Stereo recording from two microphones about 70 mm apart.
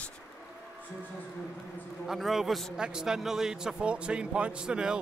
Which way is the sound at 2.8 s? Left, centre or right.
Centre.